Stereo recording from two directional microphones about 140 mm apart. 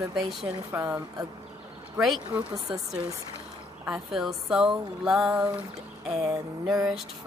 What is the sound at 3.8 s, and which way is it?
Speech, 5° right (ahead or behind).